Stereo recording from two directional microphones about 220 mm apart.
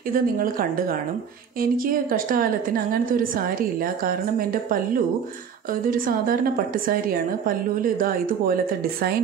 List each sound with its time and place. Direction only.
0.1 s a woman's voice: 40° right (ahead or behind)
5.9 s a woman's voice: 40° right (ahead or behind)